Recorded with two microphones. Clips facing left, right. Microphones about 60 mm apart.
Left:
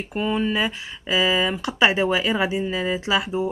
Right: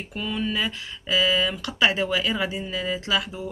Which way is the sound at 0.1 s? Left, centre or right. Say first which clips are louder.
Left 5 dB; left.